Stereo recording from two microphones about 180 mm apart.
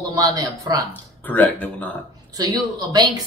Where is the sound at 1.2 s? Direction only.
10° left (ahead or behind).